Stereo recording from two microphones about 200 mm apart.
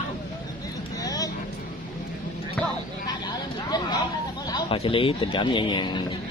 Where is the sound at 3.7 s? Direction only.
20° left (ahead or behind).